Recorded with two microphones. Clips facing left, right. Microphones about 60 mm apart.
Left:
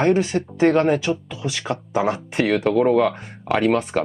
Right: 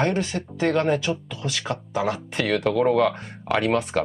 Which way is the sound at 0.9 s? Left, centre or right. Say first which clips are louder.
Left 3 dB; centre.